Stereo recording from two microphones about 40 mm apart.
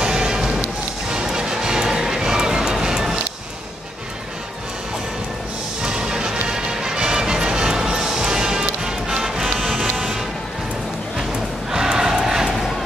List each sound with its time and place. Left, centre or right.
0.0 s music: centre
5.8 s music: centre
11.7 s music: centre